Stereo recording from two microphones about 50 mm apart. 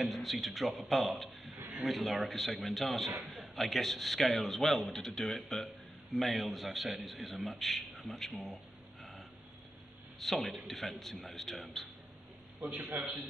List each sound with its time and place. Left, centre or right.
0.0 s a man's voice: centre
10.1 s a man's voice: centre
12.6 s a man's voice: right